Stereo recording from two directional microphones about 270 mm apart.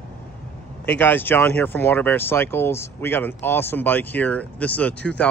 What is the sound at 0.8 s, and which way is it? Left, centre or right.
Speech, centre.